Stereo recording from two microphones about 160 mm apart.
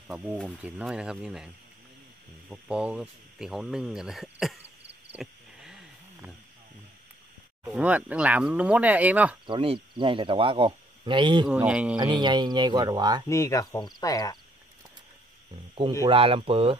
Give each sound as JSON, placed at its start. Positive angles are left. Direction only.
{"t": 0.1, "sound": "speech", "side_deg": -5}
{"t": 2.5, "sound": "speech", "side_deg": -5}
{"t": 5.1, "sound": "wild animals", "side_deg": -5}
{"t": 7.6, "sound": "speech", "side_deg": -5}
{"t": 9.5, "sound": "speech", "side_deg": -35}
{"t": 11.4, "sound": "speech", "side_deg": -5}
{"t": 12.0, "sound": "speech", "side_deg": -30}
{"t": 13.3, "sound": "speech", "side_deg": 20}
{"t": 16.1, "sound": "speech", "side_deg": -35}